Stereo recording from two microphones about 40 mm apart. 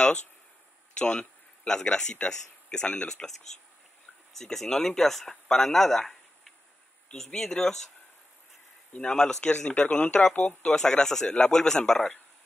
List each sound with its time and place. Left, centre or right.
0.9 s a man's voice: left
9.1 s a man's voice: centre